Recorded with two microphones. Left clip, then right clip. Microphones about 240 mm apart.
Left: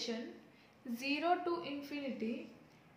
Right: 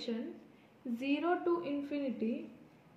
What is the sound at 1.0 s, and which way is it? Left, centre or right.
A woman's voice, left.